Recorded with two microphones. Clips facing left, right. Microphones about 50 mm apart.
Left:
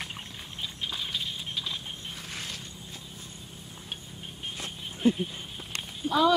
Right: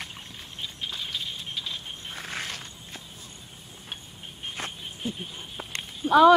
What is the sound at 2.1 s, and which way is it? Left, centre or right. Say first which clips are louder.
Walk: right 4 dB; right.